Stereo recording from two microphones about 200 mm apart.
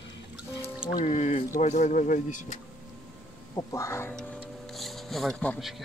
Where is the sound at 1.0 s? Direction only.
35° left (ahead or behind).